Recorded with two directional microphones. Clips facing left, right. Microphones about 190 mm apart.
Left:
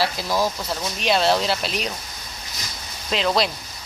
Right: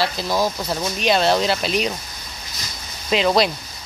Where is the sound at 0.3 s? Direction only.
15° right (ahead or behind).